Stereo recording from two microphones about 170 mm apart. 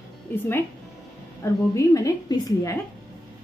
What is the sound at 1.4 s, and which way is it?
A woman's voice, 15° left (ahead or behind).